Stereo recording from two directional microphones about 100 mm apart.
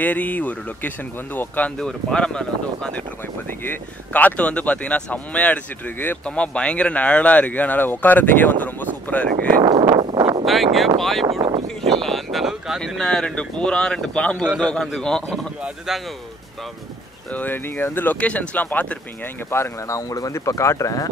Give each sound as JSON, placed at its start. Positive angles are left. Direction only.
{"t": 0.0, "sound": "speech", "side_deg": 15}
{"t": 1.8, "sound": "speech", "side_deg": 5}
{"t": 9.6, "sound": "a sound", "side_deg": -45}
{"t": 10.4, "sound": "a man's voice", "side_deg": 0}
{"t": 11.2, "sound": "a sound", "side_deg": -65}
{"t": 11.8, "sound": "a sound", "side_deg": 5}
{"t": 12.8, "sound": "a man's voice", "side_deg": 5}
{"t": 17.3, "sound": "speech", "side_deg": 20}
{"t": 19.5, "sound": "speech", "side_deg": 30}